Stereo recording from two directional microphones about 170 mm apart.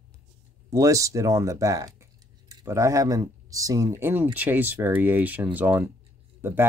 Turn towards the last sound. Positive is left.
turn(degrees=-15)  # may be behind; listen again after turning